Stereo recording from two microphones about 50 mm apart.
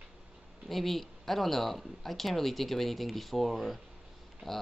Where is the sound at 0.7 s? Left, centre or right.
Centre.